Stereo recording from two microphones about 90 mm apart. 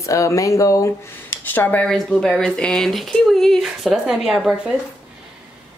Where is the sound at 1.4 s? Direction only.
20° left (ahead or behind).